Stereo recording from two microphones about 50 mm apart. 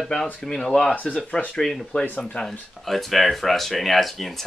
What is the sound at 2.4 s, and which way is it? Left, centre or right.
Speech, centre.